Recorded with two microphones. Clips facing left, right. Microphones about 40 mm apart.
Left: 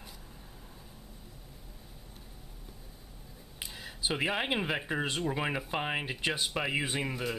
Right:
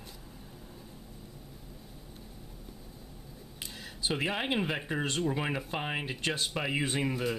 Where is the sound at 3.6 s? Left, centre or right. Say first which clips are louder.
Even; centre.